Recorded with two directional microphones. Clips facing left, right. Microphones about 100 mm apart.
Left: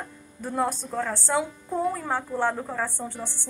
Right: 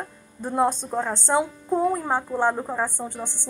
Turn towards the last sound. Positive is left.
turn(degrees=-15)  # may be behind; listen again after turning